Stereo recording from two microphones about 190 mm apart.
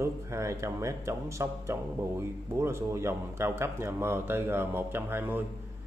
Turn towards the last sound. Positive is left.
turn(degrees=-10)  # may be behind; listen again after turning